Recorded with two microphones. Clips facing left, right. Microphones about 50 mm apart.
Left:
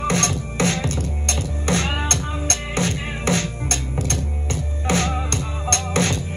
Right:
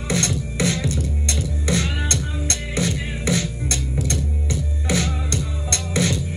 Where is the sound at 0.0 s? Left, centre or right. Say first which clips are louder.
Left 2 dB; left.